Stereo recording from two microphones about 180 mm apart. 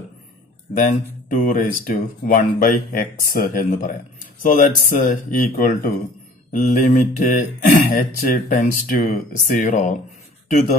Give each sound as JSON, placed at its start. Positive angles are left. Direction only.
{"t": 1.3, "sound": "speech", "side_deg": 45}
{"t": 6.5, "sound": "speech", "side_deg": 45}